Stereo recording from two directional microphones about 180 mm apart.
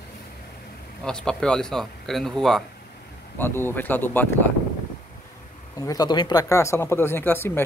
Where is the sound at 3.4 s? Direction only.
10° left (ahead or behind).